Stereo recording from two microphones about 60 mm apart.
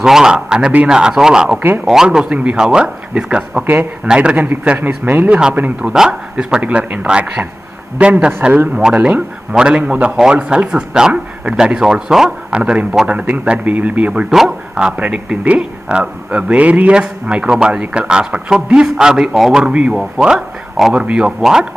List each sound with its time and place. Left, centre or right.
0.0 s a man's voice: centre
4.7 s a man's voice: right; by 6.6 s centre
6.6 s a man's voice: right
14.3 s a man's voice: centre
15.0 s a man's voice: right